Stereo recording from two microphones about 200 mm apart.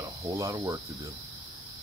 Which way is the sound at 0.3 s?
15° right (ahead or behind).